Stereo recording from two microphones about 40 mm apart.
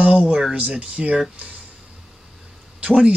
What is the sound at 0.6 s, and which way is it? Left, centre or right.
Speech, right.